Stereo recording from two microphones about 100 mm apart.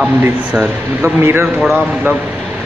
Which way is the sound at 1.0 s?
25° right (ahead or behind).